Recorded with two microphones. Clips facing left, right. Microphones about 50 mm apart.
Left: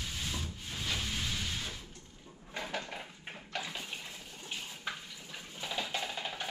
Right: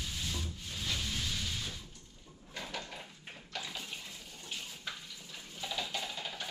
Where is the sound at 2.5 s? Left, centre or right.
Left.